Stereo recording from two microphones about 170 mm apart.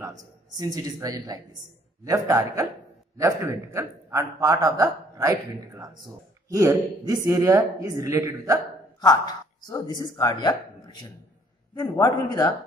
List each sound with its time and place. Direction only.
0.0 s a woman's voice: 20° right (ahead or behind)
9.0 s a man's voice: 25° left (ahead or behind)